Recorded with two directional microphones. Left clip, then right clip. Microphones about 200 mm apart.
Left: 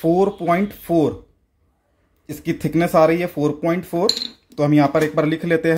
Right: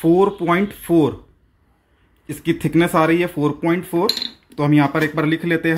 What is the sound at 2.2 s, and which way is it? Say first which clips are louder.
Speech: right 3 dB; 20° left (ahead or behind).